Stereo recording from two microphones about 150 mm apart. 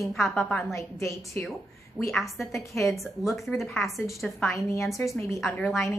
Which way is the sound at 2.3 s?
20° left (ahead or behind).